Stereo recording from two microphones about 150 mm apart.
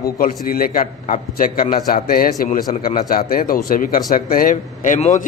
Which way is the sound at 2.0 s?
75° left (ahead or behind).